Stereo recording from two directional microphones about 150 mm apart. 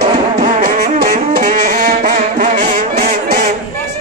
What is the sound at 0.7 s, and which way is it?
Music, 75° right (ahead or behind).